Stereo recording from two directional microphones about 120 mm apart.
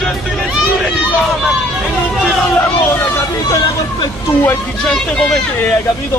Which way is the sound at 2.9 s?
25° left (ahead or behind).